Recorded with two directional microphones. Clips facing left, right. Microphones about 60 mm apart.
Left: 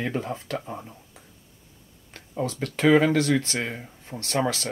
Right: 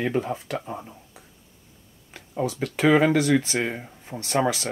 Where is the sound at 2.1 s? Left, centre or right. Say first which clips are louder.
Right 2 dB; centre.